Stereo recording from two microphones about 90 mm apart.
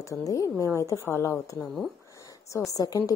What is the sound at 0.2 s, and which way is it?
Speech, 40° left (ahead or behind).